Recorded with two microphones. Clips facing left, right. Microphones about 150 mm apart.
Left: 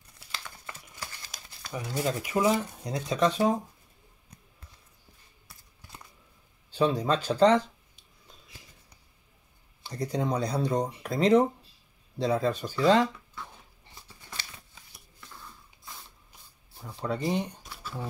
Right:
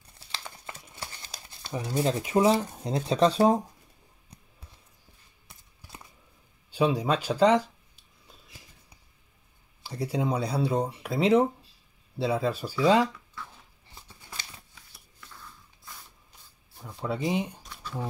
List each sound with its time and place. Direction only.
0.3 s crumpling: 25° right (ahead or behind)
5.8 s a sound: 10° right (ahead or behind)
6.7 s speech: 10° right (ahead or behind)
9.8 s speech: 5° right (ahead or behind)
16.8 s speech: 5° right (ahead or behind)